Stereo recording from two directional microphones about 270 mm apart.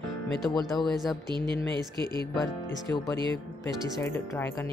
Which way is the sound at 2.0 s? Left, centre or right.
Centre.